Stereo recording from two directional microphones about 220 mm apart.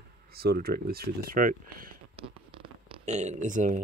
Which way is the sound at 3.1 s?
30° right (ahead or behind).